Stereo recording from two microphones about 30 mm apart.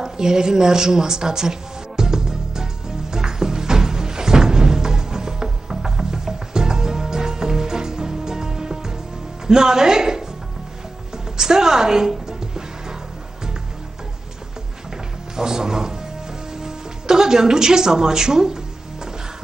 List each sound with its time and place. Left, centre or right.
0.0 s music: right
9.5 s speech: right
11.3 s music: right
15.3 s music: centre